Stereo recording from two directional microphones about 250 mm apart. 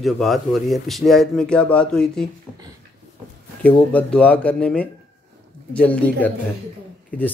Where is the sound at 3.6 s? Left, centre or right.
Centre.